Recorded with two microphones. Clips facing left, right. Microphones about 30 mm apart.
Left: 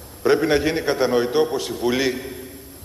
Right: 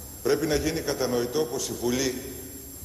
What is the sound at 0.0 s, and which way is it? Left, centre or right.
A man's voice, left.